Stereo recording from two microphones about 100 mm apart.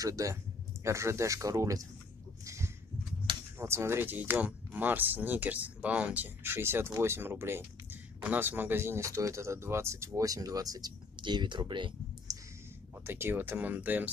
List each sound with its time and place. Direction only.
0.0 s speech: 35° right (ahead or behind)
2.4 s a sound: 30° right (ahead or behind)
3.5 s speech: 25° right (ahead or behind)
11.1 s speech: 50° right (ahead or behind)
12.9 s speech: 20° right (ahead or behind)